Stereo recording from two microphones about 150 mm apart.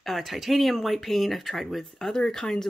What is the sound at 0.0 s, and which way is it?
Speech, centre (ahead or behind).